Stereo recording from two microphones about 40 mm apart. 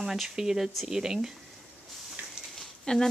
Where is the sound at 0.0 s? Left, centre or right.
Centre.